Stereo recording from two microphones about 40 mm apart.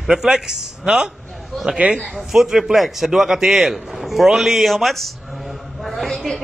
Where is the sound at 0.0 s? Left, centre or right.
Centre.